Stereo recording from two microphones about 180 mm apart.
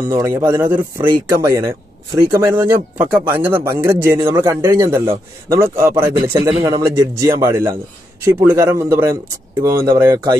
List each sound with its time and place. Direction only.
0.1 s a man's voice: 20° right (ahead or behind)